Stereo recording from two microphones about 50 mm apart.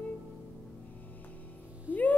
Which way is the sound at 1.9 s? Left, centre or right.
Right.